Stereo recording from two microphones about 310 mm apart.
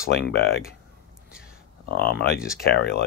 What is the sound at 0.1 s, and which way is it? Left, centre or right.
Speech, left.